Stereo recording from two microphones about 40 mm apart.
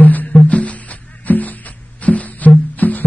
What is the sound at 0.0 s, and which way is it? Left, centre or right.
Music, left.